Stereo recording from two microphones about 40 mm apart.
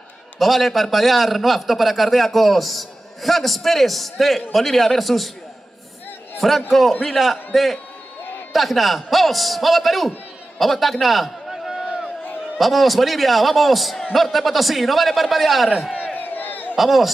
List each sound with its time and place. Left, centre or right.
0.4 s a man's voice: centre
6.3 s a man's voice: centre
11.5 s a sound: centre
12.5 s a man's voice: centre
16.2 s crowd: left
16.7 s a man's voice: centre